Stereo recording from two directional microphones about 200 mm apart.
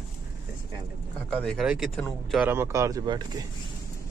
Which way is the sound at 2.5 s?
15° right (ahead or behind).